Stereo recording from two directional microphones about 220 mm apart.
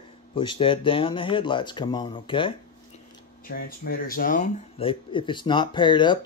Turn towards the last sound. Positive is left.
turn(degrees=20)  # may be behind; listen again after turning